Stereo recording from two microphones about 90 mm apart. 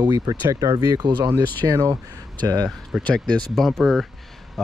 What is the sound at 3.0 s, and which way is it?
Speech, 10° left (ahead or behind).